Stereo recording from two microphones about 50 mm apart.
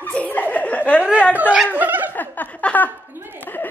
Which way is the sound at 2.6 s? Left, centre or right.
Left.